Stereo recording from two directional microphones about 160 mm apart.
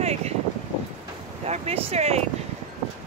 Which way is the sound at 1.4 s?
40° right (ahead or behind).